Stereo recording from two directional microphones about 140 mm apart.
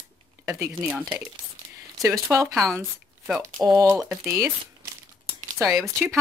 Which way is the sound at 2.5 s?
Centre (ahead or behind).